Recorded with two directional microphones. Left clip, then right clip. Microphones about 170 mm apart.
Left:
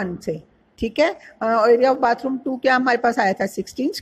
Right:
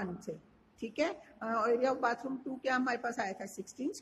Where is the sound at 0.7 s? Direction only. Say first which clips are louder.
Left 16 dB; 35° left (ahead or behind).